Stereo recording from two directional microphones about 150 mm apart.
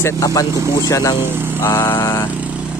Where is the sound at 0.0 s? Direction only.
25° left (ahead or behind).